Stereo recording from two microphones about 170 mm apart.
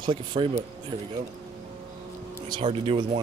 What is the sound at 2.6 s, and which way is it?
Speech, 35° right (ahead or behind).